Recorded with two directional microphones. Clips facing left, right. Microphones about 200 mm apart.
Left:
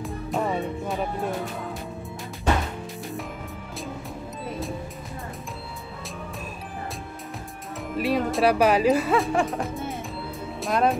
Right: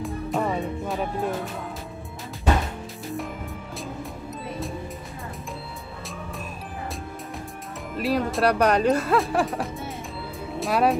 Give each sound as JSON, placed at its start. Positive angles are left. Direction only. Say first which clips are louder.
{"t": 0.0, "sound": "music", "louder": "right 1 dB", "side_deg": 0}
{"t": 7.9, "sound": "speech", "louder": "even", "side_deg": 0}